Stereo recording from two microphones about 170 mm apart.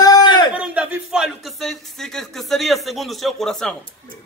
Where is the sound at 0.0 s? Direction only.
25° left (ahead or behind).